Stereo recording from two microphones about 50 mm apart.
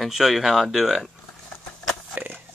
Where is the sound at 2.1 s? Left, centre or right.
Right.